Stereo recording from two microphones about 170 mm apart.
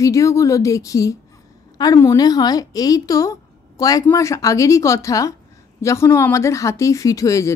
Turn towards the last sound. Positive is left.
turn(degrees=20)  # may be behind; listen again after turning